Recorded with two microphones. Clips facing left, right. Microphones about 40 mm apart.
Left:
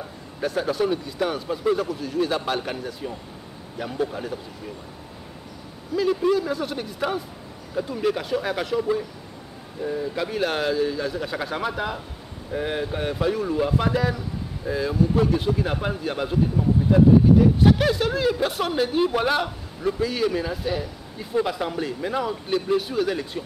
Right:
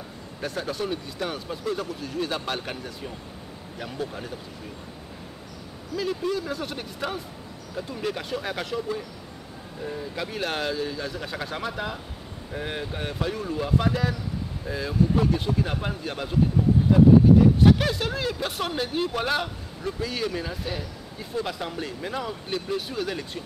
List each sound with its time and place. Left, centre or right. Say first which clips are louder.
0.4 s speech: left 6 dB; centre
5.9 s speech: left 6 dB; centre
6.3 s speech: left 6 dB; centre
9.8 s speech: left 6 dB; centre
17.4 s speech: left 1 dB; centre